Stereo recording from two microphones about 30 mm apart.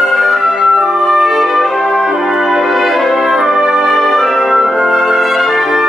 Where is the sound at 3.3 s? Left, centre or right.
Centre.